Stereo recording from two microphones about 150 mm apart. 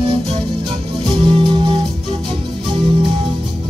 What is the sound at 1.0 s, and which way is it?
Music, 35° right (ahead or behind).